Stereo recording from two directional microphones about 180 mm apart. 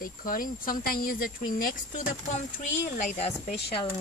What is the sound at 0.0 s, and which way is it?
A man's voice, 50° left (ahead or behind).